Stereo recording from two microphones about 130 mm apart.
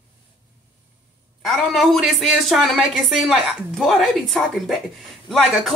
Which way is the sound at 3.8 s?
Centre (ahead or behind).